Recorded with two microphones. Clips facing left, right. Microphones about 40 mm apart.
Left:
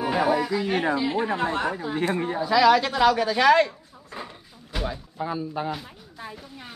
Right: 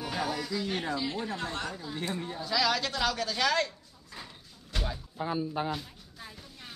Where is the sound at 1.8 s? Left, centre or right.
Left.